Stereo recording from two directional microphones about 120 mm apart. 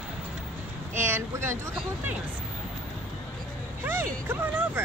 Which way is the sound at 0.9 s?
20° right (ahead or behind).